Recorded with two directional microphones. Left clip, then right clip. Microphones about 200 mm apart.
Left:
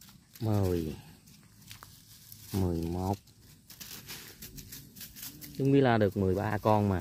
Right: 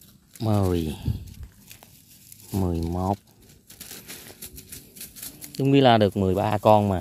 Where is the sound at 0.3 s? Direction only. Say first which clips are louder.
Right 7 dB; 25° right (ahead or behind).